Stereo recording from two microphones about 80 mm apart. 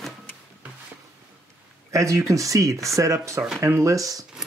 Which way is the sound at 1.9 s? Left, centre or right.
Right.